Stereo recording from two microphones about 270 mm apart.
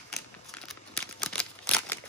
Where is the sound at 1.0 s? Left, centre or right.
Centre.